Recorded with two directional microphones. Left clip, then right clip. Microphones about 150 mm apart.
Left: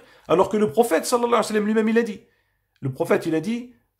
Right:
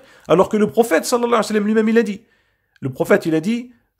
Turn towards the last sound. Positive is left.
turn(degrees=-35)  # may be behind; listen again after turning